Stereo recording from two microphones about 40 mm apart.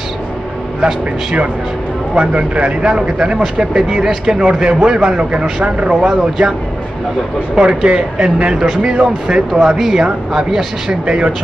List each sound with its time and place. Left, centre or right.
2.1 s speech: right
7.5 s speech: right
9.6 s speech: centre